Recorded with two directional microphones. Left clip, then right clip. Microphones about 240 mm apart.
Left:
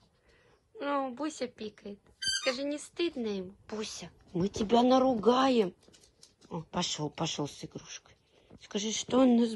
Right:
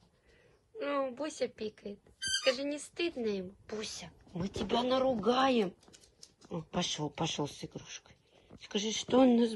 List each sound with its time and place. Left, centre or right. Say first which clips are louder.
0.7 s speech: left 1 dB; centre
6.7 s speech: left 1 dB; centre